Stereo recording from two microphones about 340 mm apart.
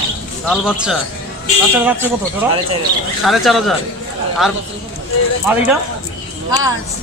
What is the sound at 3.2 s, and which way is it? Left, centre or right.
Speech, centre.